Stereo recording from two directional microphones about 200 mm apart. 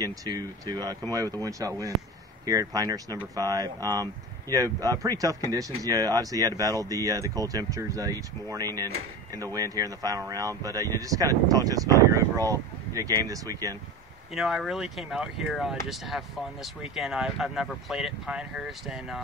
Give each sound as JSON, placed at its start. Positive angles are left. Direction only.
{"t": 0.0, "sound": "speech", "side_deg": -20}
{"t": 14.3, "sound": "speech", "side_deg": 0}